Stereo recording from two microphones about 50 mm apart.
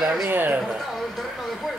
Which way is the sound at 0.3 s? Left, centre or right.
Right.